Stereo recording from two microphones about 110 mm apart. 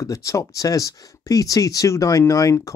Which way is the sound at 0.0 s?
30° left (ahead or behind).